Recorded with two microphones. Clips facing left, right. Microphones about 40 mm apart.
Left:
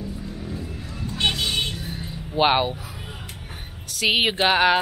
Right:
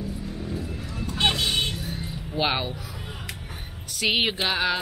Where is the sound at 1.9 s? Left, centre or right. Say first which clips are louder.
Even; centre.